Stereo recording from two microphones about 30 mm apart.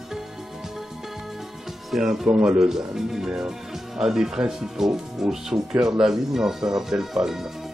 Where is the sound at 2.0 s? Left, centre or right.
Centre.